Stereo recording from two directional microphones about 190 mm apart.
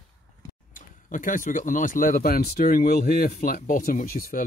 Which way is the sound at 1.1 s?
45° left (ahead or behind).